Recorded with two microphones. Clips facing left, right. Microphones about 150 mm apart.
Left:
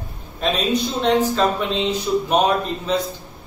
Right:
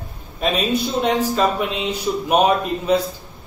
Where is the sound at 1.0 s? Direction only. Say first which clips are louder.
Left 1 dB; 10° right (ahead or behind).